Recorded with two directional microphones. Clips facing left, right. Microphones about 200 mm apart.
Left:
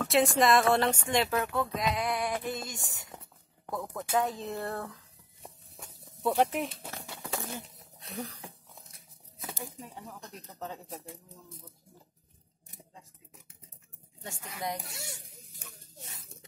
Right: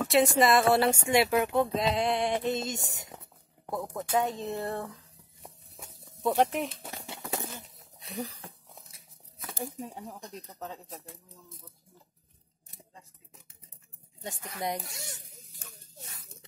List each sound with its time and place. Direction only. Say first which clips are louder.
0.0 s speech: right 2 dB; centre (ahead or behind); by 4.0 s 20° right (ahead or behind)
4.0 s speech: right 1 dB; 5° left (ahead or behind)
4.6 s speech: right 2 dB; 10° right (ahead or behind)
5.8 s a sound: right 1 dB; centre (ahead or behind)
7.1 s bird: right 2 dB; 25° right (ahead or behind)
8.0 s speech: right 2 dB; centre (ahead or behind)
10.2 s speech: right 3 dB; 15° right (ahead or behind)
10.6 s speech: left 2 dB; centre (ahead or behind)
12.6 s a sound: left 1 dB; 15° left (ahead or behind)
14.2 s speech: right 3 dB; 20° right (ahead or behind)
14.9 s sizzle: even; 5° left (ahead or behind)